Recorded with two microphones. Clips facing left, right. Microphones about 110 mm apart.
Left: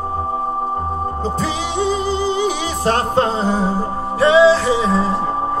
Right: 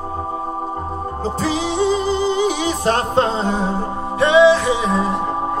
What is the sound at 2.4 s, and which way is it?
Music, 35° left (ahead or behind).